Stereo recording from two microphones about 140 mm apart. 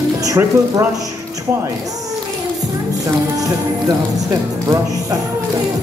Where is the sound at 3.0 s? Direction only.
25° right (ahead or behind).